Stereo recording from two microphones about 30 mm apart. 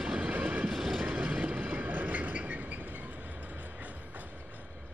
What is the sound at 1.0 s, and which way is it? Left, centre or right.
Train, right.